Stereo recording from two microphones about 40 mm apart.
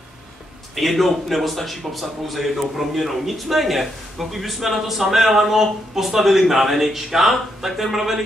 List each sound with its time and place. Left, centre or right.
0.7 s speech: centre